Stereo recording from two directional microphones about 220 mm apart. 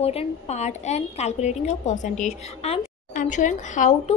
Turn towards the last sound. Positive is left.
turn(degrees=35)  # may be behind; listen again after turning